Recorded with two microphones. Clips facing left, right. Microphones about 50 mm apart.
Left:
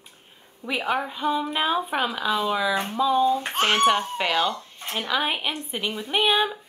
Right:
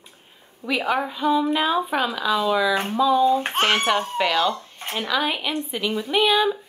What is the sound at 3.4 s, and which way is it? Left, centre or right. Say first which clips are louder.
Speech: right 2 dB; right.